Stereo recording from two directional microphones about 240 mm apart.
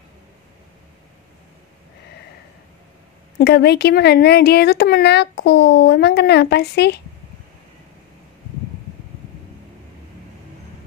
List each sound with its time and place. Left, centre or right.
3.3 s speech: left